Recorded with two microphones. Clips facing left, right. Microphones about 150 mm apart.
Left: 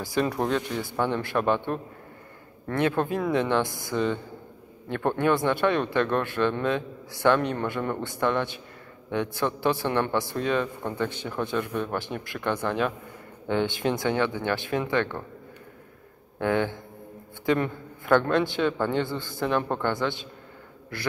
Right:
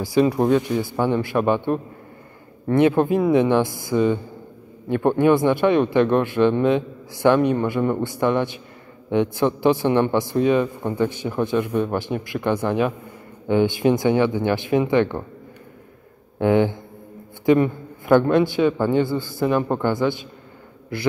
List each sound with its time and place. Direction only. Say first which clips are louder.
0.0 s a man's voice: right 8 dB; 10° right (ahead or behind)
16.3 s a man's voice: right 7 dB; 15° right (ahead or behind)